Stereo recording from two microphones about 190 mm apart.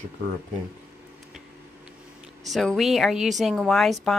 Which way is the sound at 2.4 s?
Centre (ahead or behind).